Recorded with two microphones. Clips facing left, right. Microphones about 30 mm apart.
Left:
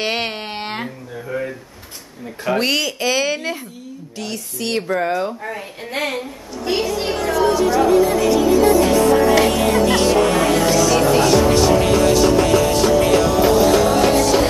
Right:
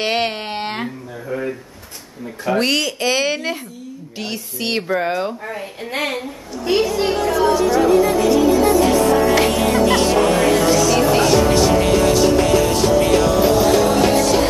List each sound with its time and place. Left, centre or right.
0.0 s a sound: centre
2.5 s a woman's voice: centre
4.2 s music: right
4.8 s speech: centre
5.3 s a woman's voice: centre
8.5 s music: centre